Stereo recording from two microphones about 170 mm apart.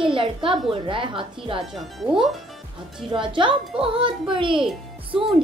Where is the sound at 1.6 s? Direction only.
Centre (ahead or behind).